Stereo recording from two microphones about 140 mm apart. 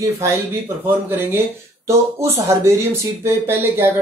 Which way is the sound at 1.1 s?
15° right (ahead or behind).